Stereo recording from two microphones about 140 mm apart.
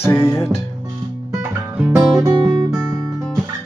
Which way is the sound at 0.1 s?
20° left (ahead or behind).